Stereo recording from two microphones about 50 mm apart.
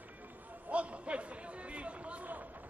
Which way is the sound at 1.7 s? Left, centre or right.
Right.